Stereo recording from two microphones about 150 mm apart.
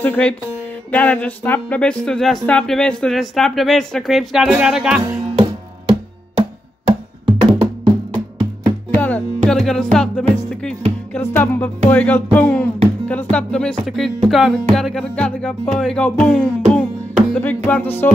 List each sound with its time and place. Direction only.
0.0 s music: 10° left (ahead or behind)
0.9 s speech: 10° left (ahead or behind); by 5.2 s 5° right (ahead or behind)
5.4 s music: 35° right (ahead or behind)
8.9 s music: 10° left (ahead or behind)
13.8 s speech: centre (ahead or behind)
17.6 s music: 10° left (ahead or behind)